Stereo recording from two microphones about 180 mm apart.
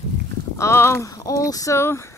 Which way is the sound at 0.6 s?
15° left (ahead or behind).